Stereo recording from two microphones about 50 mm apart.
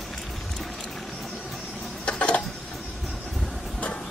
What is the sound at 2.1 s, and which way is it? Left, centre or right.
Mechanisms, left.